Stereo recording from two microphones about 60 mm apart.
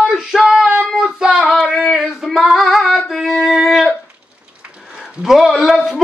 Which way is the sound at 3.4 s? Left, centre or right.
Centre.